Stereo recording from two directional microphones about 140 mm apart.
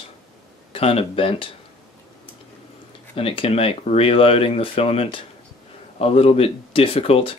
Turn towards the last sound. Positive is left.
turn(degrees=45)  # may be behind; listen again after turning